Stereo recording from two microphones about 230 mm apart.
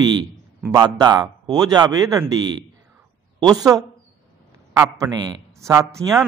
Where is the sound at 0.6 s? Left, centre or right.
Centre.